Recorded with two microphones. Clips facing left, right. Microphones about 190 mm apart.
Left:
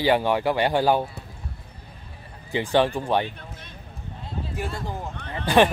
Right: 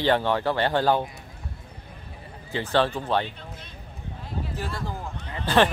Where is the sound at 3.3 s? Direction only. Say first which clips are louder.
Left 1 dB; 55° left (ahead or behind).